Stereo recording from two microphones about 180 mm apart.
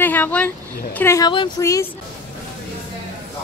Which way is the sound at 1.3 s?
25° left (ahead or behind).